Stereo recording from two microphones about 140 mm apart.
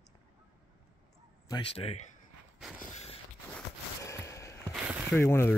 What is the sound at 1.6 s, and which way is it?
Speech, 45° left (ahead or behind).